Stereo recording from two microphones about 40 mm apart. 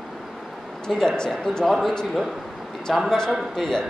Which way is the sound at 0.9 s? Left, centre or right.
Centre.